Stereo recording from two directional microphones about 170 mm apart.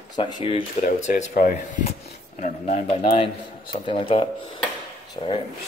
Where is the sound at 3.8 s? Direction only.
30° left (ahead or behind).